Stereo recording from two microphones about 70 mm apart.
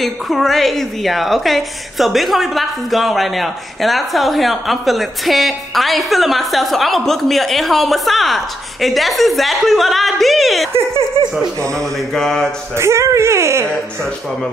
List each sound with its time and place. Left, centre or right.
0.0 s a woman's voice: centre
12.1 s a sound: centre
12.7 s speech: right